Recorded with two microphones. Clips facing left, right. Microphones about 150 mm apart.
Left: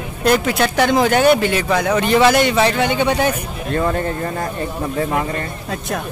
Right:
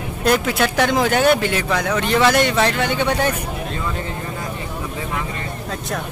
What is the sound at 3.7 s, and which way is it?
Speech, 50° left (ahead or behind).